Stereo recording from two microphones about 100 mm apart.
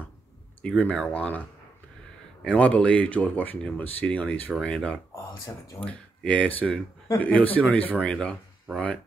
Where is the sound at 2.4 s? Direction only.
15° left (ahead or behind).